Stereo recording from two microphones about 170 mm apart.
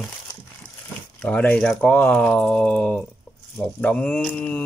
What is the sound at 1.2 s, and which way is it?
Speech, 10° left (ahead or behind).